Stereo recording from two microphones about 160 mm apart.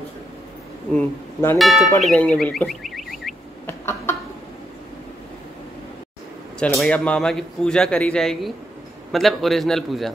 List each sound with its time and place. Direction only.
0.9 s speech: 15° left (ahead or behind)
2.0 s car alarm: 5° left (ahead or behind)
3.6 s a sound: 15° left (ahead or behind)
6.6 s speech: 5° left (ahead or behind)